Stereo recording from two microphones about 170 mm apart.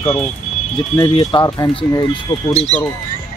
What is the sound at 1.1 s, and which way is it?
Speech, 30° left (ahead or behind).